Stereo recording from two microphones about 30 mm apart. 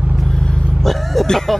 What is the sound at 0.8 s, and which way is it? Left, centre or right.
Speech, centre.